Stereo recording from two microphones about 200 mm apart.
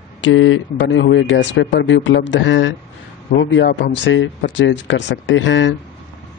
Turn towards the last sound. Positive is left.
turn(degrees=65)  # may be behind; listen again after turning